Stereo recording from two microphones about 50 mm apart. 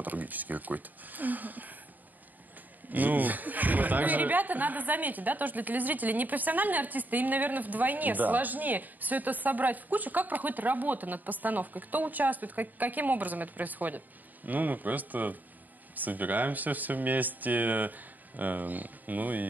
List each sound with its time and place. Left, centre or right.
0.0 s a woman's voice: right
2.9 s a woman's voice: right